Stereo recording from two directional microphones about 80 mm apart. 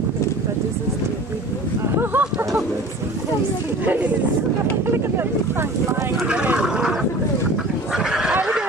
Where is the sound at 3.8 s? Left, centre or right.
Right.